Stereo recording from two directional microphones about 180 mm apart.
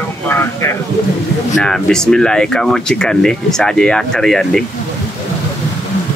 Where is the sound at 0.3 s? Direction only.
15° left (ahead or behind).